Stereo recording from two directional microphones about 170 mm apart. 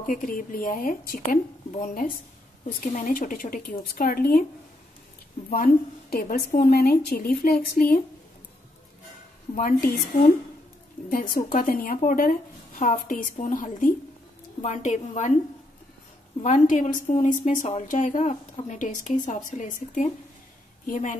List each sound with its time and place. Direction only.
0.0 s a woman's voice: 55° left (ahead or behind)
5.5 s a woman's voice: 65° left (ahead or behind)
9.6 s a woman's voice: 55° left (ahead or behind)
11.1 s a woman's voice: 55° left (ahead or behind)
16.4 s a woman's voice: 50° left (ahead or behind)